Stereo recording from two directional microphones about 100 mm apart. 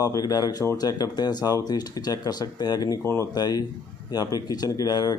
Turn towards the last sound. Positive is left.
turn(degrees=40)  # may be behind; listen again after turning